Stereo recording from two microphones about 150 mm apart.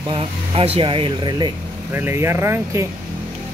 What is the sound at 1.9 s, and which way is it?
Speech, 15° right (ahead or behind).